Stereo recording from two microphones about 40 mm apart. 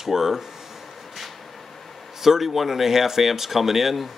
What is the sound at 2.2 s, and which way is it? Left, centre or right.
Speech, centre.